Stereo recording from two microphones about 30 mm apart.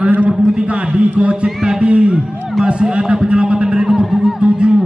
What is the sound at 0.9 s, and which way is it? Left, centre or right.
A man's voice, right.